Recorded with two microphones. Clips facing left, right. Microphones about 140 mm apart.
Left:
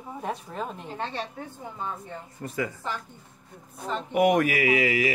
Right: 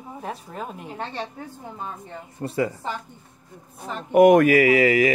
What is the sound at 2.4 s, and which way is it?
Speech, 30° right (ahead or behind).